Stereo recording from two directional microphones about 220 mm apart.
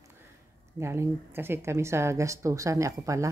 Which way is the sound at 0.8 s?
10° right (ahead or behind).